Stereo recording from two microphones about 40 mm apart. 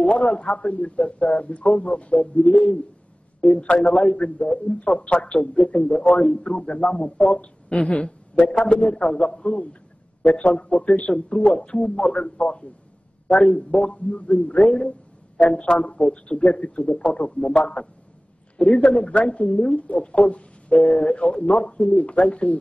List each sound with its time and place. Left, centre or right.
0.0 s a man's voice: centre
0.6 s a man's voice: left
14.1 s a man's voice: left
15.7 s a man's voice: left
20.2 s a sound: left
20.9 s a man's voice: left